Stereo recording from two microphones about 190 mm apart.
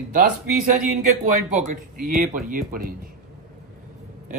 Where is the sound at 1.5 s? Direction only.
45° right (ahead or behind).